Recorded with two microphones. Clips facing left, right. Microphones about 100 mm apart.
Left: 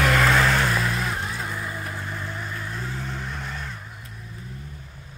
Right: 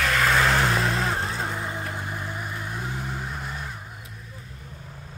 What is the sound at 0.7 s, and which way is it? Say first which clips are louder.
Vehicle: right 1 dB; 30° right (ahead or behind).